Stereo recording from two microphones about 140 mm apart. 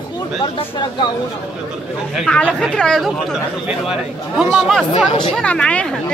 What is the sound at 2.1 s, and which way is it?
Speech, 5° left (ahead or behind).